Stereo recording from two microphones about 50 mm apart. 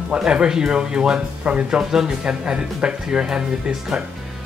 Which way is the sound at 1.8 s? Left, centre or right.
Centre.